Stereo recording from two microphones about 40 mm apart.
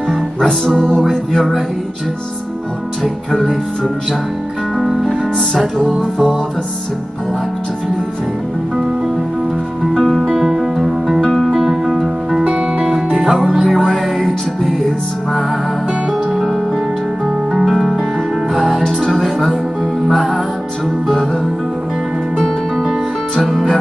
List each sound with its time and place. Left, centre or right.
0.1 s music: centre
4.7 s music: centre
10.3 s music: centre
11.1 s music: centre
12.5 s music: right
13.3 s music: centre
16.1 s music: centre
23.4 s music: centre